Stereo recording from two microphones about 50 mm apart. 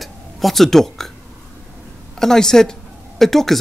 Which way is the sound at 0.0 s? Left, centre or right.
Centre.